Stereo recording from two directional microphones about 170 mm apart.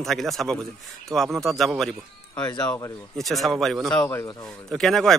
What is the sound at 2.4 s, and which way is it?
Speech, 25° left (ahead or behind).